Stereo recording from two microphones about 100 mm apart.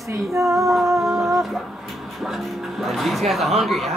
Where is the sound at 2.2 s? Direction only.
Centre (ahead or behind).